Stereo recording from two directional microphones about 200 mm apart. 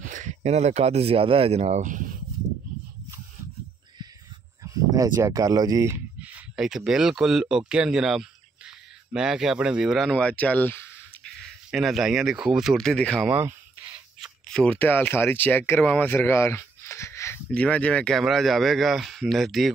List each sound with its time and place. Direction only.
0.0 s speech: 40° right (ahead or behind)
4.9 s speech: 15° right (ahead or behind); by 13.3 s 5° left (ahead or behind)
13.3 s speech: 10° right (ahead or behind)
14.5 s speech: 5° left (ahead or behind)